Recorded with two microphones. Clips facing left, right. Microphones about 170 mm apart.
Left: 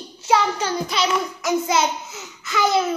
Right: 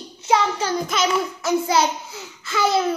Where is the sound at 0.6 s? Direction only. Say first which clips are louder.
Right 1 dB; 35° right (ahead or behind).